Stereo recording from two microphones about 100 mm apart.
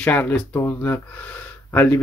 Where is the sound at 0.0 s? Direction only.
15° left (ahead or behind).